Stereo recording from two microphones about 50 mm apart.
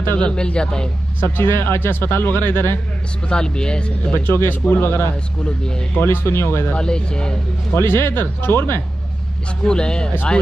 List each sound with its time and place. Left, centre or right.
0.2 s a man's voice: centre
1.2 s speech: left
3.3 s speech: centre
4.3 s speech: left
6.7 s speech: centre
7.7 s speech: left
9.7 s speech: centre